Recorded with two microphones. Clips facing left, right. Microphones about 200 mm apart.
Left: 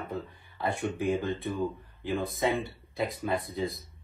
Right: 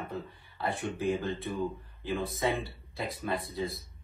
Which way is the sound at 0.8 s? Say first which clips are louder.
Left 2 dB; 15° left (ahead or behind).